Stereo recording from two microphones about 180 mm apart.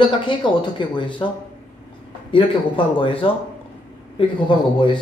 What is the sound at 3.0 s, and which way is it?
Speech, 30° left (ahead or behind).